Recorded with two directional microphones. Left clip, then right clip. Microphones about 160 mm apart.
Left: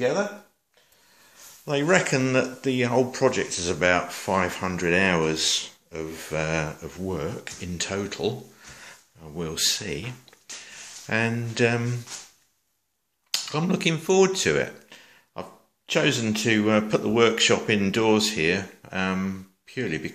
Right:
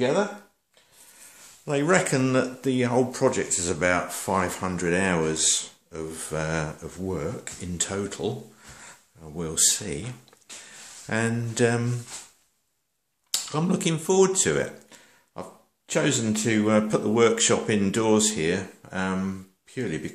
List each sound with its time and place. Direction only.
1.7 s speech: 10° right (ahead or behind)
13.3 s speech: 10° right (ahead or behind)